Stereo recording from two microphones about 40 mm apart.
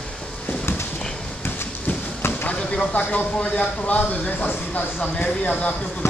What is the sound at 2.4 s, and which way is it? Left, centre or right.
Chop, left.